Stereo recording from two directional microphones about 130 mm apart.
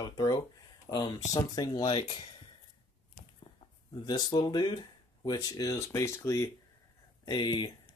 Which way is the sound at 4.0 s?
35° left (ahead or behind).